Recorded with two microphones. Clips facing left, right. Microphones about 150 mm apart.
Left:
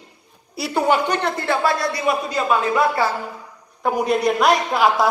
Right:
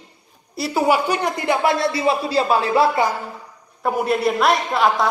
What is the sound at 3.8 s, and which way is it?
A woman's voice, 5° right (ahead or behind).